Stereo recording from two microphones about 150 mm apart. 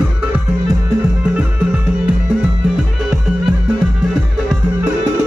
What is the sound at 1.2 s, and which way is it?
Music, 10° right (ahead or behind).